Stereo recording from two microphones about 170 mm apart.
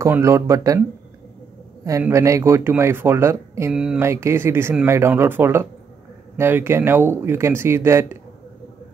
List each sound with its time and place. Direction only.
0.0 s speech: 15° right (ahead or behind)
1.9 s speech: 15° right (ahead or behind)